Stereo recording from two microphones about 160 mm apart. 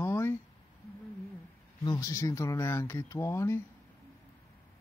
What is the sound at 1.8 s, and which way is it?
Speech, 20° left (ahead or behind).